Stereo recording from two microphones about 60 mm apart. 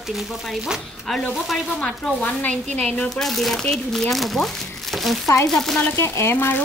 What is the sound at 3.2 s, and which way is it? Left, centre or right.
Speech, centre.